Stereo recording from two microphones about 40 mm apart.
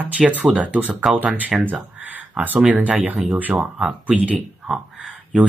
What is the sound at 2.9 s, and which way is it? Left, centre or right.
Speech, right.